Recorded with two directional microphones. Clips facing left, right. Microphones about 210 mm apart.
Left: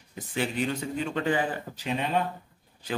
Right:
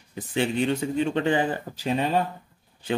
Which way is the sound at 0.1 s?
30° right (ahead or behind).